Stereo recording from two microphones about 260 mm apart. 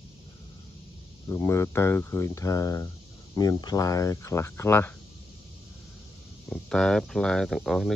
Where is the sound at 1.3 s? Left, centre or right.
Centre.